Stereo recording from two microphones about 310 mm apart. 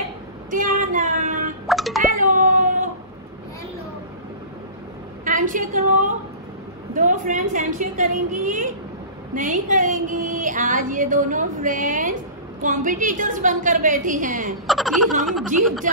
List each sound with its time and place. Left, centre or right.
0.5 s child singing: right
1.7 s music: centre
2.0 s a sound: right
5.2 s a woman's voice: right
14.7 s speech: centre